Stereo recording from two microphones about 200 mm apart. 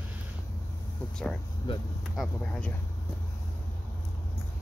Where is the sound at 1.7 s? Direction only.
25° left (ahead or behind).